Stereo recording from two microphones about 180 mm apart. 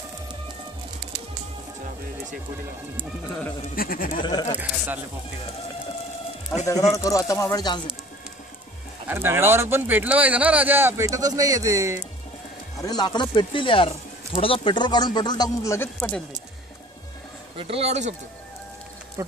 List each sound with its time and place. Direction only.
3.7 s speech: 55° left (ahead or behind)
4.2 s speech: 25° left (ahead or behind)
4.6 s speech: 10° right (ahead or behind)
6.6 s speech: 20° left (ahead or behind)
9.0 s speech: 10° right (ahead or behind)
12.8 s speech: 20° left (ahead or behind)
17.6 s speech: 35° right (ahead or behind)
19.2 s speech: 15° right (ahead or behind)